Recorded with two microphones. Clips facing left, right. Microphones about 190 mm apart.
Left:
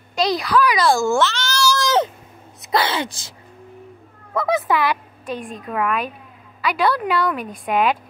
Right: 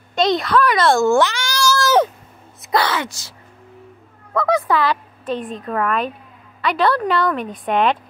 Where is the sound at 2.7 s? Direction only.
25° left (ahead or behind).